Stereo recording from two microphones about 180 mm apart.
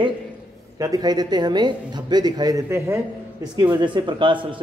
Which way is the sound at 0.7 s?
20° right (ahead or behind).